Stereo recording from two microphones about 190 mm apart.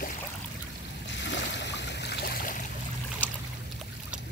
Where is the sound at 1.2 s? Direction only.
70° left (ahead or behind); by 2.5 s 50° left (ahead or behind).